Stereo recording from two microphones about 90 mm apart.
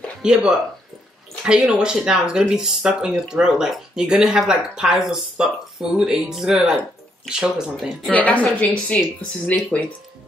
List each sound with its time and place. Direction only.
0.2 s speech: 10° right (ahead or behind)
8.1 s a woman's voice: 15° left (ahead or behind)